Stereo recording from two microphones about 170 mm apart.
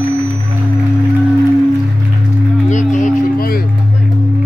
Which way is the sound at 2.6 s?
45° left (ahead or behind).